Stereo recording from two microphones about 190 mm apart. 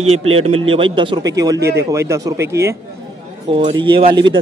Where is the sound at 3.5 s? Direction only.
25° right (ahead or behind).